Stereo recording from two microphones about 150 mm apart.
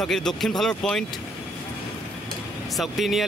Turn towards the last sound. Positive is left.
turn(degrees=0)  # may be behind; listen again after turning